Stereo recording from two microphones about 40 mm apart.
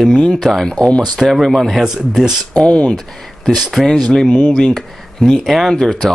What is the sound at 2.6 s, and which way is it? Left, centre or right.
Speech, left.